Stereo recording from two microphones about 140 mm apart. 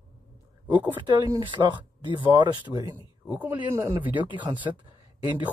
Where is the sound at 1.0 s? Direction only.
30° right (ahead or behind).